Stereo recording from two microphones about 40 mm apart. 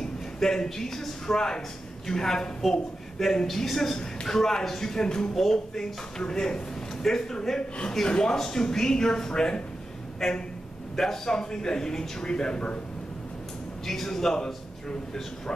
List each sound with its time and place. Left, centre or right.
0.0 s a man's voice: centre
3.4 s speech: centre
10.2 s speech: centre
13.8 s speech: centre